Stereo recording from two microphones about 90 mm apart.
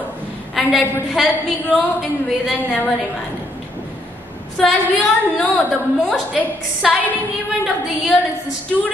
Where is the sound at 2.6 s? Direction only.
15° left (ahead or behind).